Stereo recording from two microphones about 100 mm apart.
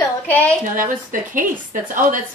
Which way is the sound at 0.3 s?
15° left (ahead or behind).